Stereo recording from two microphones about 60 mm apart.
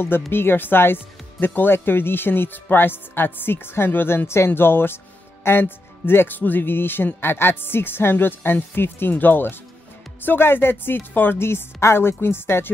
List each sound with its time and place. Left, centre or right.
0.0 s speech: left